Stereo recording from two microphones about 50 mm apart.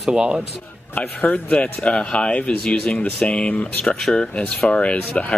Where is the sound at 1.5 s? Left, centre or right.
Centre.